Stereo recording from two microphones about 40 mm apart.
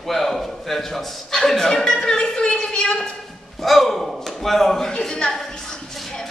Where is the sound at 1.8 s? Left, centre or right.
Centre.